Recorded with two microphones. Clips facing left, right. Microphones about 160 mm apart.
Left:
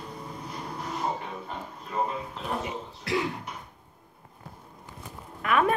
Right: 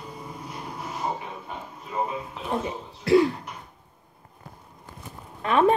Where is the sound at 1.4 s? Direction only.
5° right (ahead or behind).